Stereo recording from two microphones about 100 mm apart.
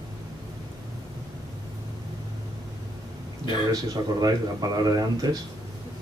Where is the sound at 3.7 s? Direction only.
40° right (ahead or behind).